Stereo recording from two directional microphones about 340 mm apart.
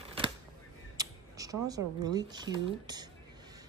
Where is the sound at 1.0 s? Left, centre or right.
Centre.